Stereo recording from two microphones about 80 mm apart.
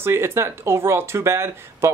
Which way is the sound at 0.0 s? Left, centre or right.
Right.